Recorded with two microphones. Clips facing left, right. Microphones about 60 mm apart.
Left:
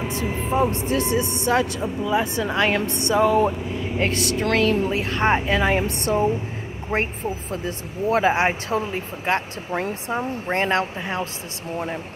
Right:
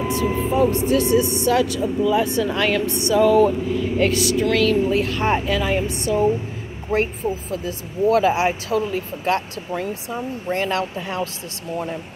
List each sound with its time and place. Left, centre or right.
0.1 s vehicle: left
0.7 s speech: left
5.9 s speech: left
6.9 s speech: left
9.8 s speech: left